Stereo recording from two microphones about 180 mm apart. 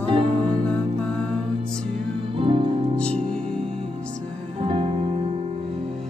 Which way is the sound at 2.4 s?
30° right (ahead or behind).